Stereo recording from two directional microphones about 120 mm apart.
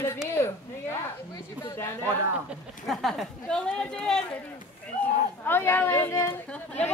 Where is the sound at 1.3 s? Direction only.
35° left (ahead or behind).